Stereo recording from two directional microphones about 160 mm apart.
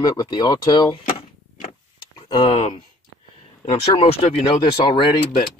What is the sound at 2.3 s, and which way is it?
Speech, 30° left (ahead or behind).